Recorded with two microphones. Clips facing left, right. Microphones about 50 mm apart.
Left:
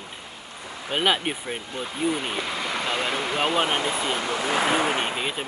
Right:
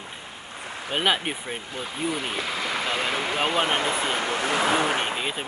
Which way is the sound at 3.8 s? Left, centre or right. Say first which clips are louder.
Right 1 dB; right.